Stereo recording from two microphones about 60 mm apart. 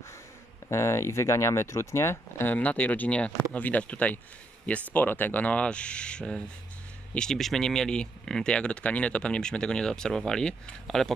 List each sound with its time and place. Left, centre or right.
0.7 s speech: left
2.4 s speech: left; by 11.1 s centre